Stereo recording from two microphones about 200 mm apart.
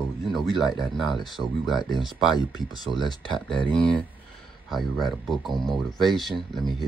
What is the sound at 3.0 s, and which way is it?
Speech, 20° left (ahead or behind).